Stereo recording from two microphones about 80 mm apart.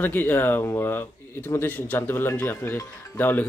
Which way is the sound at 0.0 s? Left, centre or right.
Left.